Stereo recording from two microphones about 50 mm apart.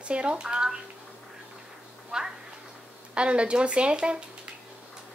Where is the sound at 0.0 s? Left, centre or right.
Right.